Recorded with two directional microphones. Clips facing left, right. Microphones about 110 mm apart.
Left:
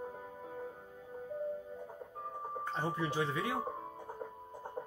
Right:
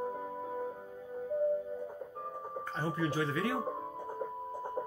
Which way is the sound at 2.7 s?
20° left (ahead or behind).